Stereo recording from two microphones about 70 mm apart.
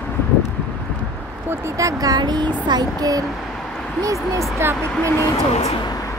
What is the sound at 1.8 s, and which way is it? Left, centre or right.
Speech, right.